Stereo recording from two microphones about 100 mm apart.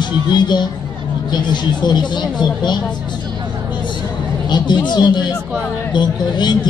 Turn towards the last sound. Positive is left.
turn(degrees=50)  # may be behind; listen again after turning